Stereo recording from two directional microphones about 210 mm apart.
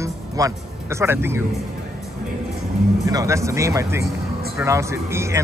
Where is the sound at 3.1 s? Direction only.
15° right (ahead or behind).